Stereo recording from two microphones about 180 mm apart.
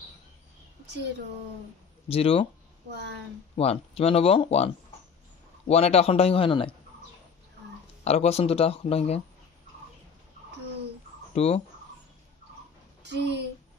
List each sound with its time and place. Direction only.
2.0 s speech: 30° left (ahead or behind)
2.9 s a woman's voice: 70° right (ahead or behind)
3.5 s speech: 35° left (ahead or behind)
8.0 s speech: 35° left (ahead or behind)
11.3 s speech: 35° left (ahead or behind)
13.0 s speech: 75° right (ahead or behind)